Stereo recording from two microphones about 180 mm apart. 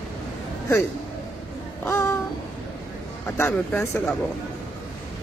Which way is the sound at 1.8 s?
15° left (ahead or behind).